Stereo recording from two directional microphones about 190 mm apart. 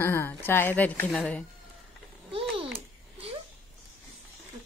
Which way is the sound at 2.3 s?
30° right (ahead or behind).